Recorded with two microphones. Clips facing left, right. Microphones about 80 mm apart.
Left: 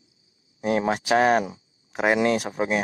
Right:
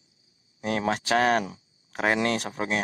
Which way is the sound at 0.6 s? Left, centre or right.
Centre.